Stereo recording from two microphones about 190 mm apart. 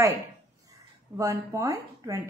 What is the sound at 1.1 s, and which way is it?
A woman's voice, 15° right (ahead or behind).